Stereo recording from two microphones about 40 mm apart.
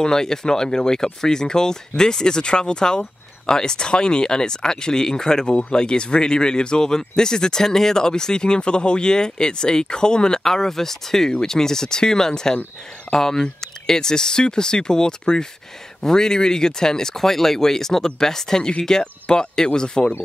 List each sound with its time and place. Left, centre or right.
0.0 s speech: centre